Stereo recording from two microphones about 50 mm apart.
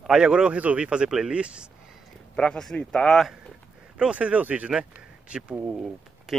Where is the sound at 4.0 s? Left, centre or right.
Right.